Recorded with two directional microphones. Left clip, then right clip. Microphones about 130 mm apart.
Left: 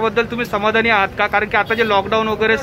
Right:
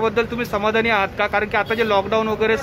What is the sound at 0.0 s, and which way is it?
Speech, 15° right (ahead or behind).